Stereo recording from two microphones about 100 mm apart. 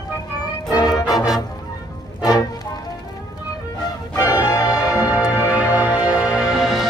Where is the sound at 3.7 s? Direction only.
40° left (ahead or behind).